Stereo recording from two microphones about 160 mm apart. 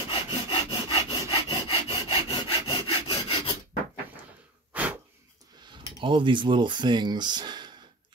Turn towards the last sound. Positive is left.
turn(degrees=-30)  # may be behind; listen again after turning